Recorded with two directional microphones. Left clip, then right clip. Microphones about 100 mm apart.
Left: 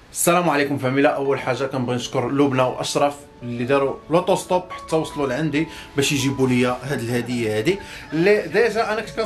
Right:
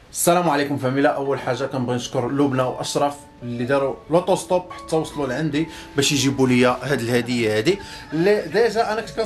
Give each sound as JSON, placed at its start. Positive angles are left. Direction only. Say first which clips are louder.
{"t": 0.2, "sound": "speech", "louder": "even", "side_deg": -5}
{"t": 8.1, "sound": "speech", "louder": "left 1 dB", "side_deg": 0}